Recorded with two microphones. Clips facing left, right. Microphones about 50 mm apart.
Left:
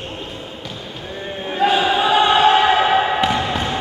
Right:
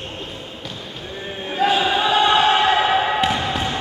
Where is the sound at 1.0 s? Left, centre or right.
Centre.